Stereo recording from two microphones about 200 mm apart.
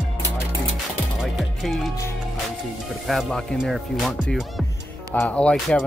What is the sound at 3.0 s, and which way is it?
Speech, centre (ahead or behind).